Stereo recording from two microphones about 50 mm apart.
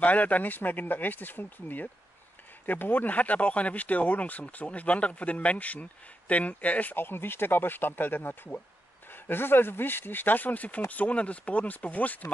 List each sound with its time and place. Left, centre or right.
0.0 s speech: left